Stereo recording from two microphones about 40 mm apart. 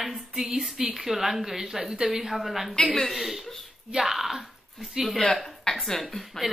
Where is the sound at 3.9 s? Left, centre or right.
Centre.